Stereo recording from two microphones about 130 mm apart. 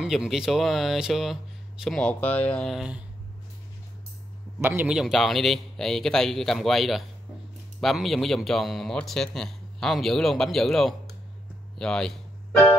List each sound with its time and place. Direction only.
0.0 s a man's voice: 5° right (ahead or behind)
4.6 s a man's voice: 15° right (ahead or behind); by 11.0 s centre (ahead or behind)
11.8 s music: 5° left (ahead or behind)